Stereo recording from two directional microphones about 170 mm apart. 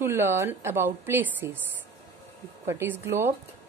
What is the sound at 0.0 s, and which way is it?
A woman's voice, 15° right (ahead or behind).